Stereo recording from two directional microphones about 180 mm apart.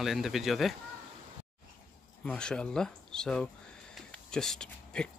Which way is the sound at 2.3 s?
5° left (ahead or behind).